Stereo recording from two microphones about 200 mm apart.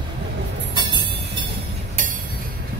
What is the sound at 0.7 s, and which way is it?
Train, 20° right (ahead or behind).